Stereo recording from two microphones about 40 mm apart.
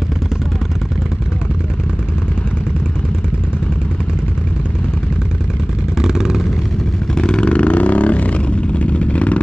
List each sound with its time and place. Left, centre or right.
5.9 s vehicle: centre
7.2 s vehicle: left